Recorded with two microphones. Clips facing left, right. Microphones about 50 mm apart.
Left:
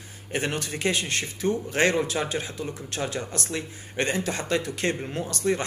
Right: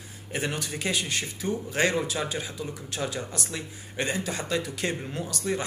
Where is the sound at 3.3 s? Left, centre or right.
Left.